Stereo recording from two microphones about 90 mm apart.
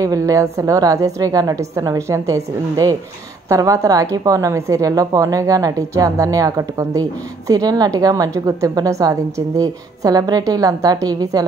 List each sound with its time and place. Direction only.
0.0 s a woman's voice: 40° right (ahead or behind)